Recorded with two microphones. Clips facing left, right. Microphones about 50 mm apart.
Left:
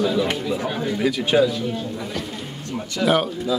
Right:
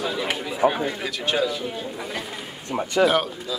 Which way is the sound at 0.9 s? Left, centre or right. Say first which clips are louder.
Left 6 dB; centre.